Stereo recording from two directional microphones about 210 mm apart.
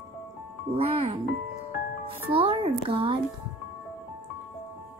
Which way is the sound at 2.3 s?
25° right (ahead or behind).